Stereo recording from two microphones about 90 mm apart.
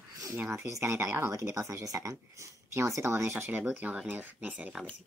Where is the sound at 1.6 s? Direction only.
35° right (ahead or behind).